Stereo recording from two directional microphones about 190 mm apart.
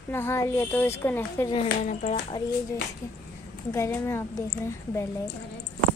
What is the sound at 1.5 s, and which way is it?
Speech, 35° left (ahead or behind).